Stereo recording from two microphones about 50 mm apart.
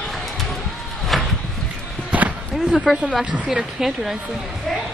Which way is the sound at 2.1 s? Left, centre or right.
Right.